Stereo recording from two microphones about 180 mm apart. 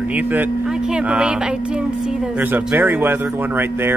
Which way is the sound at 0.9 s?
5° right (ahead or behind).